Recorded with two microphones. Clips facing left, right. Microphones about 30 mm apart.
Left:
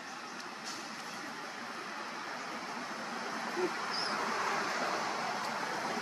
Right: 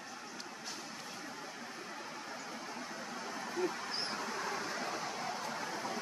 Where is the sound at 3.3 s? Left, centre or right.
Left.